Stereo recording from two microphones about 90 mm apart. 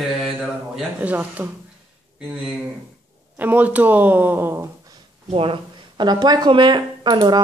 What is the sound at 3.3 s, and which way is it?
A woman's voice, 20° right (ahead or behind).